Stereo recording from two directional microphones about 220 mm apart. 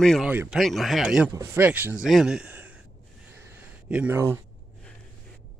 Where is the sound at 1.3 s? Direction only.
10° right (ahead or behind).